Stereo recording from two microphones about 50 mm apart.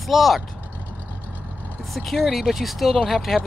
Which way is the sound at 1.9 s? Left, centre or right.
Centre.